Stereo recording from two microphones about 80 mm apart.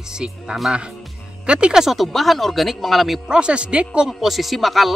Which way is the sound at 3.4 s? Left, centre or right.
Centre.